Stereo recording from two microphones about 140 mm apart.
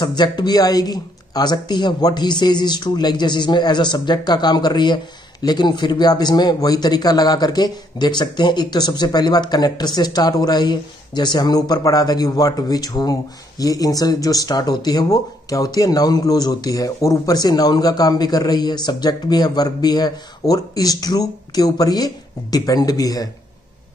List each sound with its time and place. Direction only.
0.0 s speech: 30° left (ahead or behind)